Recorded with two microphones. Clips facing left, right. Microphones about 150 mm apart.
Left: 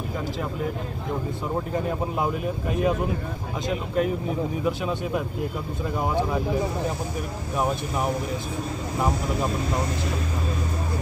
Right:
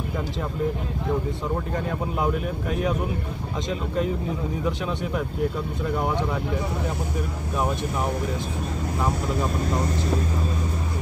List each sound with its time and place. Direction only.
2.1 s speech: 20° left (ahead or behind)
4.6 s speech: 15° left (ahead or behind)